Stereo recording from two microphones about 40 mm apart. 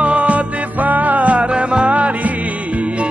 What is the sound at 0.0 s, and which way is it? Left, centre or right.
Music, right.